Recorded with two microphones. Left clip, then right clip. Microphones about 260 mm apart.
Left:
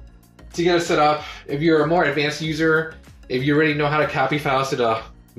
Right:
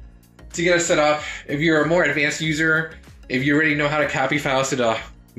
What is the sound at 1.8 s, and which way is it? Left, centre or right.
Speech, right.